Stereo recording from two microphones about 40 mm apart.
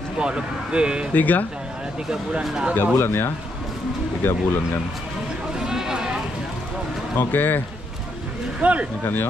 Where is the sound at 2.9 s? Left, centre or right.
Left.